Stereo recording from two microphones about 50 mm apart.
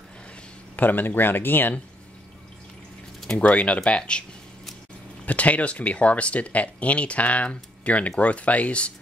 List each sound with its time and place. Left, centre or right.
0.7 s speech: left
3.4 s speech: left
5.2 s speech: left